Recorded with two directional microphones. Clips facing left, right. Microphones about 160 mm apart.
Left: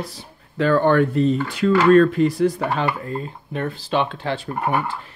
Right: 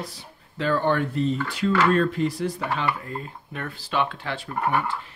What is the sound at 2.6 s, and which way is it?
Speech, 35° left (ahead or behind).